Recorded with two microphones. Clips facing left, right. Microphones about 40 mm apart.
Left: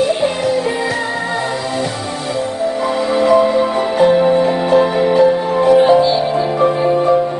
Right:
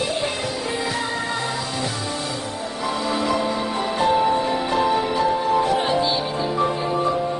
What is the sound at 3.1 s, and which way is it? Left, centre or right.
Music, left.